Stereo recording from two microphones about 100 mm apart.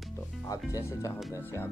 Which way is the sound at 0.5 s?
30° left (ahead or behind).